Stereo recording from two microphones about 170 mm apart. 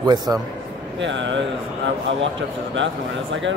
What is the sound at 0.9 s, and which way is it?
Speech, 90° right.